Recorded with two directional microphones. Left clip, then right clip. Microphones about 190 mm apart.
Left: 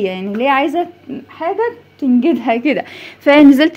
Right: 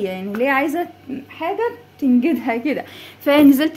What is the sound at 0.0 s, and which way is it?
Speech, 35° left (ahead or behind).